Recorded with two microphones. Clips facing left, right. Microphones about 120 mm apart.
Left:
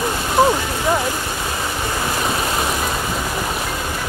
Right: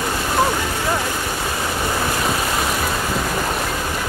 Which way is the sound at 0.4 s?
15° left (ahead or behind).